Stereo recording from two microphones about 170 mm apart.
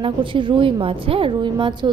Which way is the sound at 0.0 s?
30° right (ahead or behind).